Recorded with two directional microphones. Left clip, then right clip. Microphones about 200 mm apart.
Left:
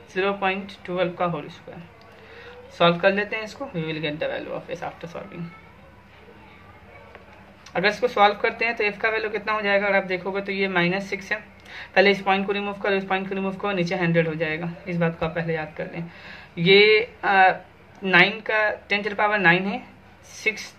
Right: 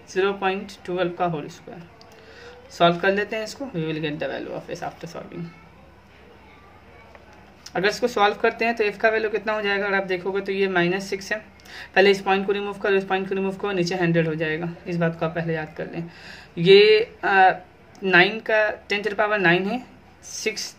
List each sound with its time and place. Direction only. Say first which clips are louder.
0.1 s a woman's voice: right 1 dB; 55° right (ahead or behind)
7.7 s a woman's voice: left 1 dB; 55° right (ahead or behind)